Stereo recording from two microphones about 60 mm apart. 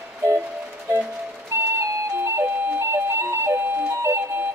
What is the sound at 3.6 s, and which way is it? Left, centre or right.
Ice cream truck, right.